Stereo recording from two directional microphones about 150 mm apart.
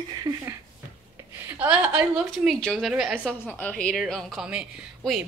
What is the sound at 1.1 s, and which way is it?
A woman's voice, 10° right (ahead or behind).